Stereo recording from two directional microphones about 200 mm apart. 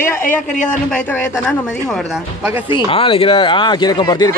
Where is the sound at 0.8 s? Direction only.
5° left (ahead or behind).